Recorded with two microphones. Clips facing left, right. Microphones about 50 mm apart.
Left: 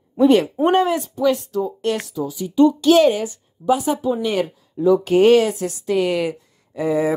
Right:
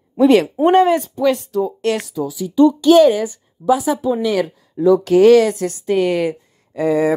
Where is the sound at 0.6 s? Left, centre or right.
Right.